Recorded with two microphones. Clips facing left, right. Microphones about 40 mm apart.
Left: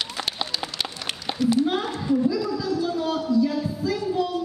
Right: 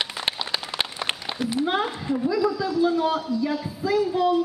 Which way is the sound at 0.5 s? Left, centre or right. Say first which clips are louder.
Right 1 dB; right.